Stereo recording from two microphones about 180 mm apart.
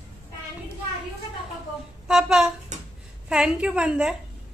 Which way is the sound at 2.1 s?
5° right (ahead or behind).